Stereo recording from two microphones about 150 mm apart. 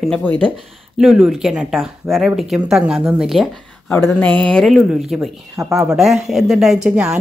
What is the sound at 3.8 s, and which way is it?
Speech, 10° left (ahead or behind).